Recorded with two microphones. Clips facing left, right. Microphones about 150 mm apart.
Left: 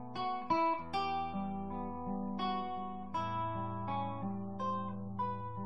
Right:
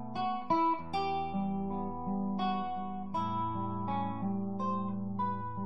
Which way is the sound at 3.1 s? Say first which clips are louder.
Right 3 dB; 25° right (ahead or behind).